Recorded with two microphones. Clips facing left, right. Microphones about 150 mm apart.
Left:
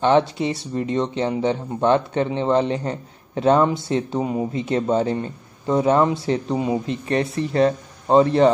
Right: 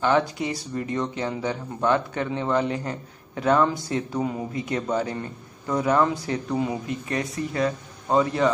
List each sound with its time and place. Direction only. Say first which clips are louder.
0.0 s speech: left 5 dB; 25° left (ahead or behind)